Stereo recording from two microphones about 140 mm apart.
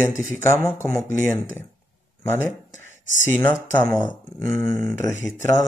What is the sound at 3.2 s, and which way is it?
Speech, 15° left (ahead or behind).